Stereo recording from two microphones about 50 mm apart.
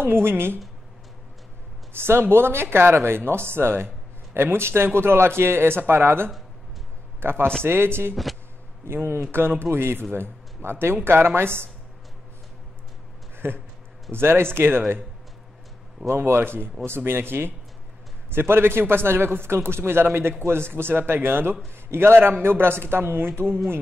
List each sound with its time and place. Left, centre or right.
0.0 s speech: right
2.0 s a man's voice: right
13.4 s speech: right
16.3 s speech: right